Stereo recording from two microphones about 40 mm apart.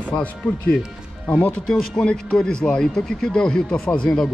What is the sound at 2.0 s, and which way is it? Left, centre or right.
Speech, left.